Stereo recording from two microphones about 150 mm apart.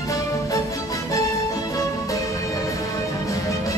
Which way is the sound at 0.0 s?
25° left (ahead or behind).